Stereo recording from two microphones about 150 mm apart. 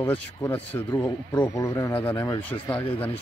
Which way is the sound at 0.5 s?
15° left (ahead or behind).